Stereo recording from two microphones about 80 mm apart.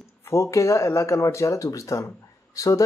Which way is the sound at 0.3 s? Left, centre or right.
Left.